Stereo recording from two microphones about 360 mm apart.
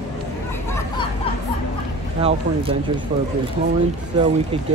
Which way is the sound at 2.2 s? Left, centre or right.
Centre.